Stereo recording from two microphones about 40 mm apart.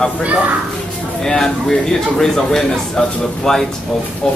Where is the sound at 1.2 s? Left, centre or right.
Centre.